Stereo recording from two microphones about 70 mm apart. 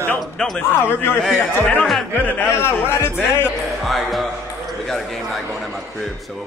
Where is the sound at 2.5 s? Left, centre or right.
Left.